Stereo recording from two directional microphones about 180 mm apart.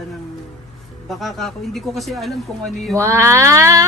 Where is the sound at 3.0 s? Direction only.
15° right (ahead or behind).